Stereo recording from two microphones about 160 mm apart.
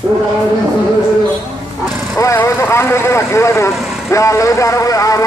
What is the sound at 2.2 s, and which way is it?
A man's voice, 20° left (ahead or behind).